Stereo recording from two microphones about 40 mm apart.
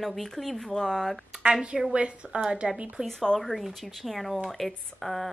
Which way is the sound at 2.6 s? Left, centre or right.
Centre.